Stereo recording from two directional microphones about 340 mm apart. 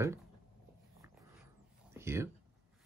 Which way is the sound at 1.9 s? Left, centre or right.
Centre.